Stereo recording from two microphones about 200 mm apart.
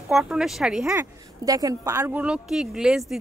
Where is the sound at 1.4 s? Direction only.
15° right (ahead or behind).